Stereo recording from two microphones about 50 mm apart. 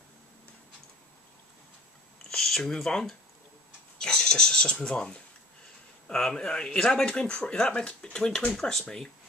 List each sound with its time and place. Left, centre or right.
2.3 s speech: centre
8.5 s speech: centre